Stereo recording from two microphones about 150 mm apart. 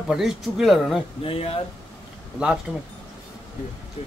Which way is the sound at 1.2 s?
40° left (ahead or behind).